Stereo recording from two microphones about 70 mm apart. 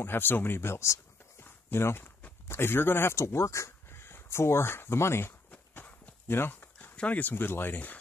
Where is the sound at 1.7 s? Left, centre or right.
Left.